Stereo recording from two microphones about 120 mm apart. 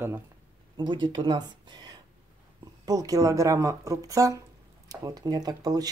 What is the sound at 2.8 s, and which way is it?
Speech, 30° right (ahead or behind).